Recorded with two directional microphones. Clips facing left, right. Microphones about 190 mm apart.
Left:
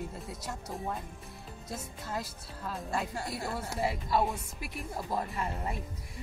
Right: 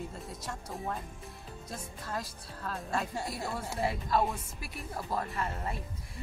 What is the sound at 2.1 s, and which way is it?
Speech, 10° left (ahead or behind).